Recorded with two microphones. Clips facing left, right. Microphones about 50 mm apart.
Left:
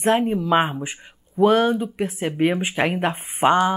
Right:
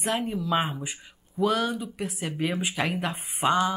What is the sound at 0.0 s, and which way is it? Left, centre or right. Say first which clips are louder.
Speech: left 9 dB; left.